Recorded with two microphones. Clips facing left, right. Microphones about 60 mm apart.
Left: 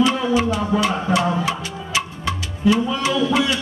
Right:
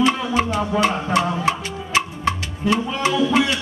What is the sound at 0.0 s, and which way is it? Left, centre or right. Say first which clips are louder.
Music: left 1 dB; right.